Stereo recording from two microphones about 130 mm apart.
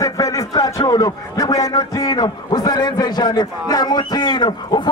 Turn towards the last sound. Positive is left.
turn(degrees=35)  # may be behind; listen again after turning